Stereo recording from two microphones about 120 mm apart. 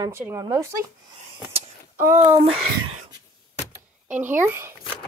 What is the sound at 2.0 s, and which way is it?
Speech, 20° right (ahead or behind).